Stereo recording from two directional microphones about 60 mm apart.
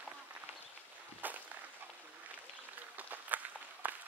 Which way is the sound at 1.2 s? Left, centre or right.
Right.